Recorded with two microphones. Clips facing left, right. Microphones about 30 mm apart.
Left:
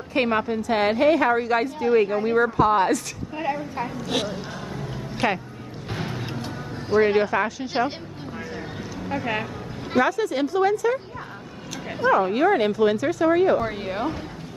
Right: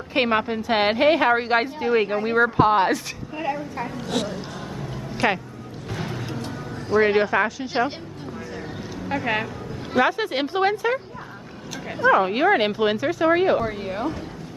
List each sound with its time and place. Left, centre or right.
0.1 s a woman's voice: right
1.8 s speech: right
3.3 s speech: centre
5.1 s speech: centre
5.9 s music: centre
7.0 s speech: centre
9.1 s speech: centre
10.0 s a woman's voice: right
12.1 s speech: right
13.7 s a woman's voice: centre